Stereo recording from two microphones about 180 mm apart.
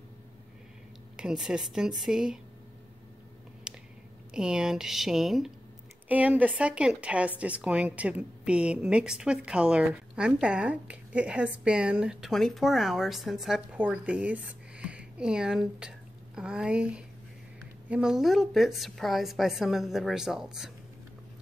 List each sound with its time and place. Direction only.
1.1 s a woman's voice: 5° right (ahead or behind)
3.7 s a sound: 5° right (ahead or behind)
4.3 s a woman's voice: 5° right (ahead or behind)